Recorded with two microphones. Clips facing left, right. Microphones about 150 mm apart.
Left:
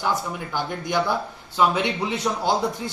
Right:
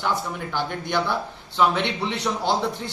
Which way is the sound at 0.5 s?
10° left (ahead or behind).